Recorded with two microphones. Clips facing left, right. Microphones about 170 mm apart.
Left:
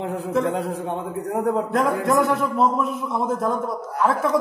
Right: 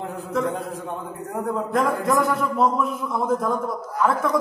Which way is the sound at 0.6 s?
85° left.